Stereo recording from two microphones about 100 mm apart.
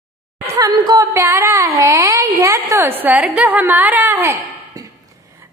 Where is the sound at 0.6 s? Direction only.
40° right (ahead or behind).